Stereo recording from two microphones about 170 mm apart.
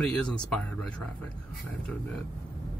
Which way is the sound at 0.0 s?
5° left (ahead or behind).